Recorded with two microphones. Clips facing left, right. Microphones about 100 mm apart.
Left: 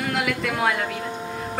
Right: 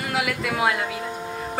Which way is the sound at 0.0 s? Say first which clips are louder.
Left 1 dB; 5° right (ahead or behind).